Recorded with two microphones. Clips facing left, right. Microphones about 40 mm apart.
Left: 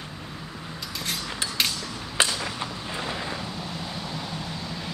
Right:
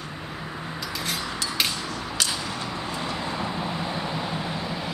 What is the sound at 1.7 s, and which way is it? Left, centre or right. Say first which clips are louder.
Mechanisms: right 3 dB; right.